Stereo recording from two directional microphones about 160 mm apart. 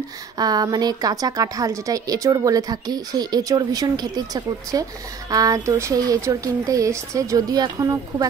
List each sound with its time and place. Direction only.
0.4 s speech: 25° right (ahead or behind)